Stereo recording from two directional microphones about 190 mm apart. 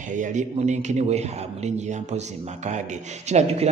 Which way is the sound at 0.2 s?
40° right (ahead or behind).